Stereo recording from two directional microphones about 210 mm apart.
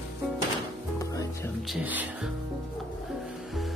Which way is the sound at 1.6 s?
5° right (ahead or behind).